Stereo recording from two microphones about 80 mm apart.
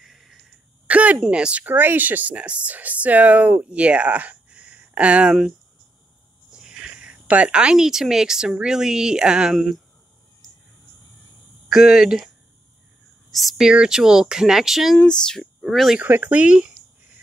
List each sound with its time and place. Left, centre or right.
0.0 s wheeze: centre
0.8 s speech: centre
6.5 s speech: centre
11.7 s speech: centre
13.3 s speech: centre
15.0 s speech: centre
15.6 s speech: centre
16.0 s speech: right